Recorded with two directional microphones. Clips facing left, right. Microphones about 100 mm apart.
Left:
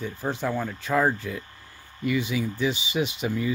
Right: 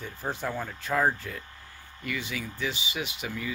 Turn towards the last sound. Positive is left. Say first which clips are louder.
# left 8 dB
turn(degrees=25)  # may be behind; listen again after turning